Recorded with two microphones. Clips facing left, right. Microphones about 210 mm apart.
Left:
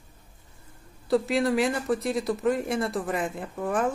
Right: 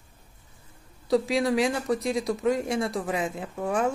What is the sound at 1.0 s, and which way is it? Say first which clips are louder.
Speech: even; centre (ahead or behind).